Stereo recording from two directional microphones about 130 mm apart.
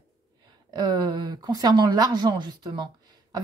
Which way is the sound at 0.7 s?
35° right (ahead or behind).